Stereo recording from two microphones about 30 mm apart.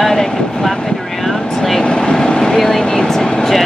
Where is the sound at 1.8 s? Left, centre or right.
Left.